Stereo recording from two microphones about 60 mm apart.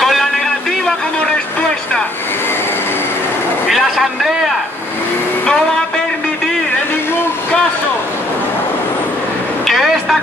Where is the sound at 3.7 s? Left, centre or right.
Centre.